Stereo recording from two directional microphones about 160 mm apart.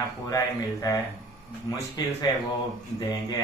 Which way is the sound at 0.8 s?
25° left (ahead or behind).